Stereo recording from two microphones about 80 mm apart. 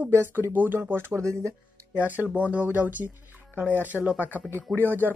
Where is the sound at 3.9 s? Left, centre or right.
Centre.